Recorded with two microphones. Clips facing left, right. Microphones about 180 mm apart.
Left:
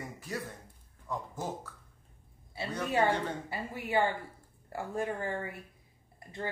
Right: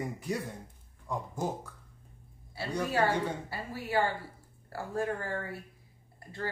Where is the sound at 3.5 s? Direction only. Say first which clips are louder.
Even; 20° left (ahead or behind).